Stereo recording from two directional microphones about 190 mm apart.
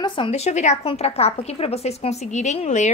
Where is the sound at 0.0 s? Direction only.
25° left (ahead or behind).